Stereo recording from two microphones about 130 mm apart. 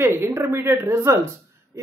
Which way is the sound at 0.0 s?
20° right (ahead or behind).